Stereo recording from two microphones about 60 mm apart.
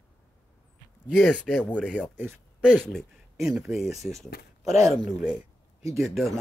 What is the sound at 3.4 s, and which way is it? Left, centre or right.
Speech, centre.